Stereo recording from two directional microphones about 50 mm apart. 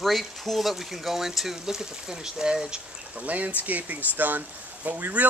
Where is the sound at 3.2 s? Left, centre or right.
Right.